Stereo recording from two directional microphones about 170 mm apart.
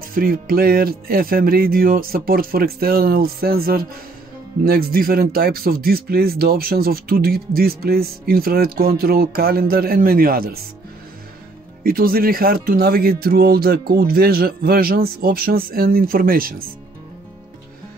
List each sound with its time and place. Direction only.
0.0 s speech: 60° right (ahead or behind)
11.8 s speech: 60° right (ahead or behind)